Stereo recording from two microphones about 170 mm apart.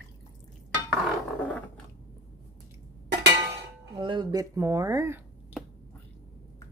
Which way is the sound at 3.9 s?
30° right (ahead or behind).